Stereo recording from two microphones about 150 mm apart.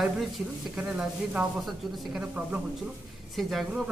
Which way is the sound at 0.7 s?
5° right (ahead or behind).